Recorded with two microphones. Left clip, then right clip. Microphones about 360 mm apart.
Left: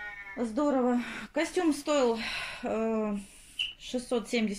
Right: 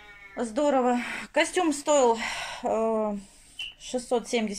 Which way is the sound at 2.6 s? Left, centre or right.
Right.